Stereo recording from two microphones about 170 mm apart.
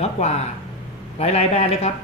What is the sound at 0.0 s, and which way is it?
A woman's voice, 40° left (ahead or behind).